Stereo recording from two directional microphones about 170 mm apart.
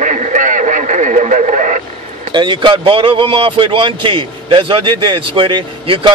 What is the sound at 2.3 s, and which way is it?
A man's voice, 30° right (ahead or behind).